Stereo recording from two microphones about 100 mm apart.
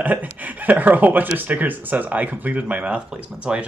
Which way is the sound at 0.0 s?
15° right (ahead or behind).